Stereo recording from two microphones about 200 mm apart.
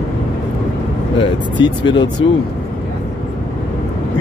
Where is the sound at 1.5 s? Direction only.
25° left (ahead or behind).